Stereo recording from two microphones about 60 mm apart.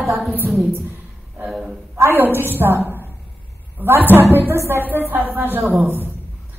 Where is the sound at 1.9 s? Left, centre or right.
Right.